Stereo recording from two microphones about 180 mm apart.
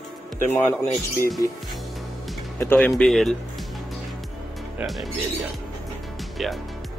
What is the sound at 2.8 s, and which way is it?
Speech, 5° left (ahead or behind).